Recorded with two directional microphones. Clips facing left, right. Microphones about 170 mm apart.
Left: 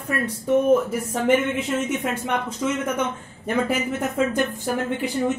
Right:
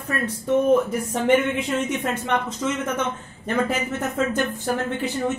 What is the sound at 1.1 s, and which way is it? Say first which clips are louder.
Speech: even; 5° left (ahead or behind).